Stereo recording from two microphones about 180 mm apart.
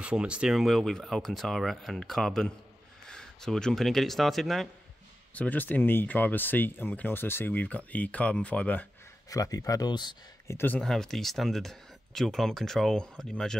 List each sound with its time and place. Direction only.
0.0 s speech: 5° right (ahead or behind)
9.3 s speech: 20° left (ahead or behind)
10.6 s speech: 5° left (ahead or behind)